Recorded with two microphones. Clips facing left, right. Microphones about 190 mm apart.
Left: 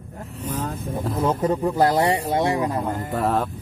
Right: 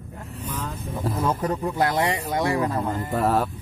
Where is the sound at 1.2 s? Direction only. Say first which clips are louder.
Left 4 dB; 20° left (ahead or behind).